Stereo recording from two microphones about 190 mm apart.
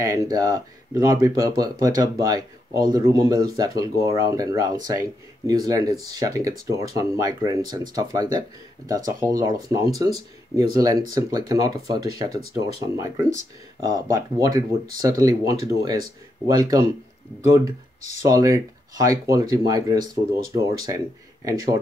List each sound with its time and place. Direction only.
0.0 s speech: 15° right (ahead or behind)